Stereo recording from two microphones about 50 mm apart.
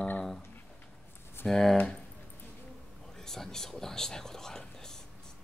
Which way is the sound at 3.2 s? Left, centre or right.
Centre.